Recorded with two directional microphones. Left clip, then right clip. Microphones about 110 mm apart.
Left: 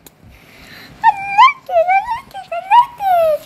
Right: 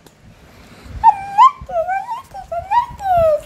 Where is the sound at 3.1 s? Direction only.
80° left.